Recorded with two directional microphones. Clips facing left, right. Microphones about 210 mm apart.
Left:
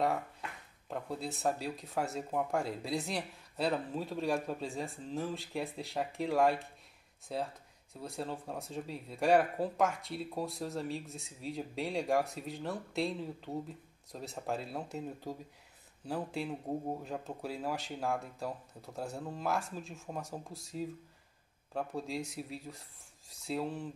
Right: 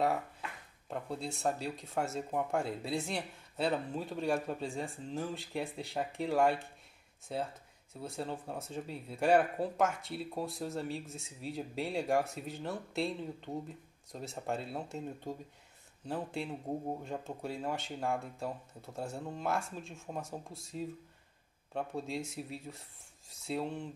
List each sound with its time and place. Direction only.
0.0 s speech: centre (ahead or behind)